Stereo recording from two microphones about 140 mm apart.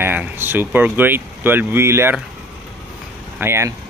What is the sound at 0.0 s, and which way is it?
Speech, 15° right (ahead or behind).